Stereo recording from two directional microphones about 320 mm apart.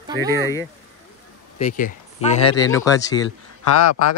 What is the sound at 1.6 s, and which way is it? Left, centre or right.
Speech, left.